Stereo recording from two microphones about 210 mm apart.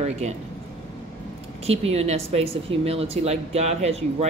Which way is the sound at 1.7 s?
30° right (ahead or behind).